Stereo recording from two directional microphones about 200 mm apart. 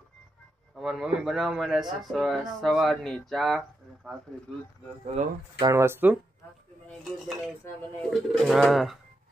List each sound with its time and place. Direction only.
0.7 s speech: centre (ahead or behind)
5.0 s speech: 30° right (ahead or behind)
5.7 s speech: 10° right (ahead or behind)
6.9 s speech: centre (ahead or behind)